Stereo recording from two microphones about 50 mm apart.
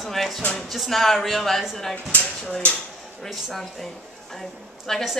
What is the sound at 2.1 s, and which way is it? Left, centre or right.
Speech, left.